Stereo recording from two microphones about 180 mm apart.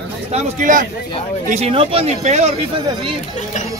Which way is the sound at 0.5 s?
45° right (ahead or behind).